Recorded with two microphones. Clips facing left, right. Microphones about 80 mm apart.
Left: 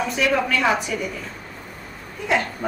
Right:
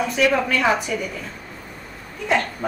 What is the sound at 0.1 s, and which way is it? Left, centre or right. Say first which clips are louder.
Speech: right 2 dB; centre.